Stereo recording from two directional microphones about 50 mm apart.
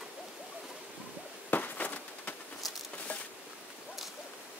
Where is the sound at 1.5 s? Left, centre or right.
Left.